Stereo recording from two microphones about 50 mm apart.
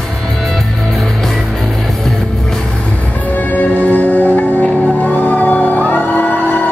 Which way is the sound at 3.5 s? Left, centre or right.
Left.